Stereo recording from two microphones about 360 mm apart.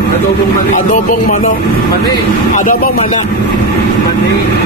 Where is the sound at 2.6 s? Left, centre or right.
Left.